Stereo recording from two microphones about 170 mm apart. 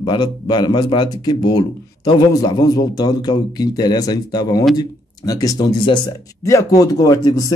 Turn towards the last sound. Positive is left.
turn(degrees=20)  # may be behind; listen again after turning